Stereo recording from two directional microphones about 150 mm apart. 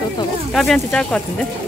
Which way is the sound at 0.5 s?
Centre (ahead or behind).